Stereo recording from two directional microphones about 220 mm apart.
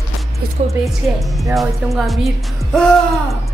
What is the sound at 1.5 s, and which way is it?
Speech, centre (ahead or behind).